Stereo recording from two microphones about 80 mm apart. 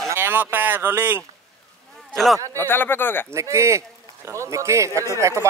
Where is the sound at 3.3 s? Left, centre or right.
Right.